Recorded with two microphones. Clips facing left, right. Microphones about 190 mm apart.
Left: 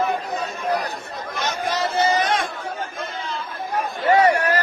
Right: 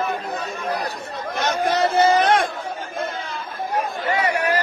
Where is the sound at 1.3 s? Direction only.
55° right (ahead or behind).